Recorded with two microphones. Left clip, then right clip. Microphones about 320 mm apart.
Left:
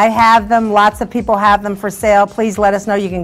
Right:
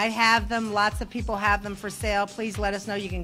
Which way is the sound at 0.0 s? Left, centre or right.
Centre.